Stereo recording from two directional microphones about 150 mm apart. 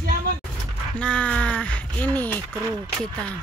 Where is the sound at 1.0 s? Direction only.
5° left (ahead or behind).